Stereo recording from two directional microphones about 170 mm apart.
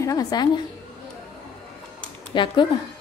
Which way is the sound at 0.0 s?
20° left (ahead or behind).